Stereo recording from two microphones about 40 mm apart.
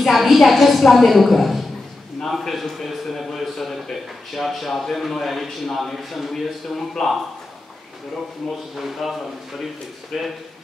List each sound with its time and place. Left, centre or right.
0.0 s a man's voice: centre
8.5 s a man's voice: centre
10.1 s a man's voice: centre